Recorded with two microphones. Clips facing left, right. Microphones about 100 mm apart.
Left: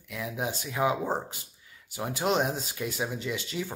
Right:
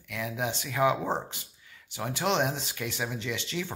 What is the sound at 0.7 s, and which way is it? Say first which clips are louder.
Speech: right 2 dB; 25° left (ahead or behind).